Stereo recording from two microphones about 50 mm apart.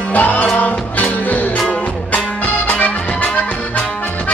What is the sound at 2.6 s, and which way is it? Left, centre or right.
Music, left.